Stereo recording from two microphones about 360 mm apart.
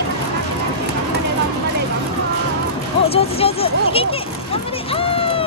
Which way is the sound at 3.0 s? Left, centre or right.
Centre.